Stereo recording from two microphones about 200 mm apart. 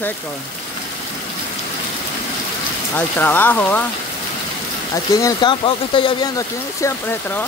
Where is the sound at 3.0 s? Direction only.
10° left (ahead or behind).